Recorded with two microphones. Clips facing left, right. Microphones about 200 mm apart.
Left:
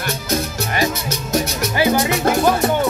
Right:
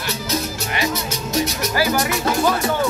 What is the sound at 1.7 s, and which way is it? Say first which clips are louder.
Music: left 5 dB; 20° left (ahead or behind).